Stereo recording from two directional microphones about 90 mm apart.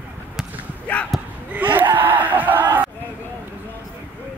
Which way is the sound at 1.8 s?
20° right (ahead or behind).